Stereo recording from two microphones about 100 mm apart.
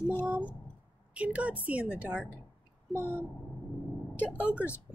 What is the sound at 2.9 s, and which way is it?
Speech, 25° left (ahead or behind).